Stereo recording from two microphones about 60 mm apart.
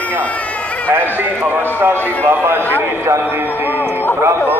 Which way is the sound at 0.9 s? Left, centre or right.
Right.